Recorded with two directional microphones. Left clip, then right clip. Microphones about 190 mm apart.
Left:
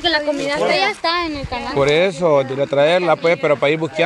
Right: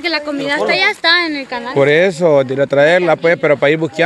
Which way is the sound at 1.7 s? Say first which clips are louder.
Right 4 dB; 35° right (ahead or behind).